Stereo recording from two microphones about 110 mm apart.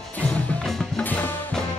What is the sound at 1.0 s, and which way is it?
Music, 15° left (ahead or behind).